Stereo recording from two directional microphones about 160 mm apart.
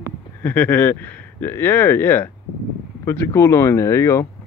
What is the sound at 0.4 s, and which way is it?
Speech, 10° left (ahead or behind).